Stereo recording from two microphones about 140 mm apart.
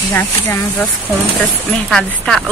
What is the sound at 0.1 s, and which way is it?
Speech, 15° left (ahead or behind).